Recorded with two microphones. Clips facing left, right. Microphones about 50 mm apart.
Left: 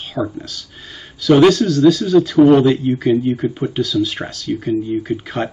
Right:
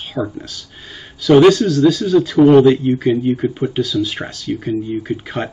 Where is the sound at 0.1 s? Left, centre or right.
Centre.